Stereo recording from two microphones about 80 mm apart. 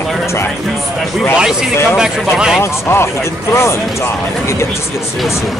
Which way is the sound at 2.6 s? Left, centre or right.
Left.